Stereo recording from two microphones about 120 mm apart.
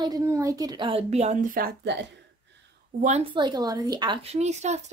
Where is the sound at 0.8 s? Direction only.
60° right (ahead or behind); by 1.5 s 80° right.